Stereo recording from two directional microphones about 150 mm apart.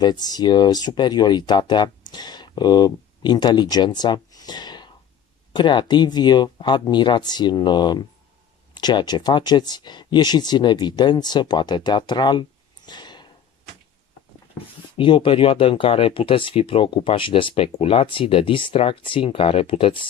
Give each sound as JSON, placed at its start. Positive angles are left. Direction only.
{"t": 0.0, "sound": "speech", "side_deg": 25}
{"t": 15.0, "sound": "speech", "side_deg": 35}